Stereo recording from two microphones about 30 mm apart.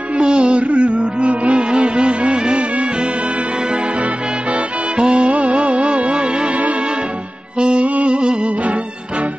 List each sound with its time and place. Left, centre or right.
0.2 s music: right
4.9 s music: right
7.5 s music: right
7.8 s music: right